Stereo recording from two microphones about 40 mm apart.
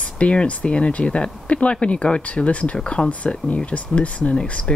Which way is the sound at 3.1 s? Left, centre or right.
Left.